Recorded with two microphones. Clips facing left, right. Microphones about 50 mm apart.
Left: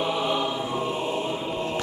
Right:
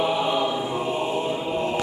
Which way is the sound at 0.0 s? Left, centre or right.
Centre.